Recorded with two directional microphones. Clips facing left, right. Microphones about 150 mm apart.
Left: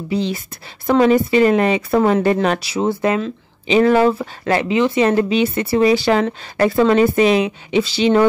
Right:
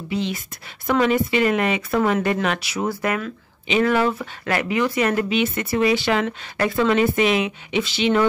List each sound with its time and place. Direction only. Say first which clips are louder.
0.1 s speech: left 4 dB; 35° left (ahead or behind)